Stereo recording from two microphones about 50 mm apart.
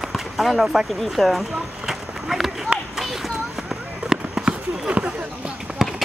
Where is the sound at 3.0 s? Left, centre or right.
Centre.